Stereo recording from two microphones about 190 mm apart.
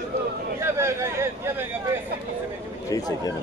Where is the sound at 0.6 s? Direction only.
15° right (ahead or behind).